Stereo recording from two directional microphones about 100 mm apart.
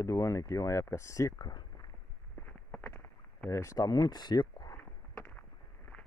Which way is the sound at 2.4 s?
20° left (ahead or behind).